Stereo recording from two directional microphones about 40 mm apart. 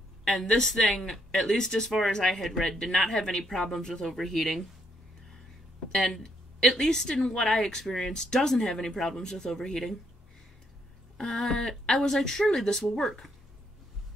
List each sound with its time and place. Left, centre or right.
0.2 s a woman's voice: centre
1.9 s speech: centre
5.9 s speech: centre
7.1 s speech: centre
11.1 s speech: centre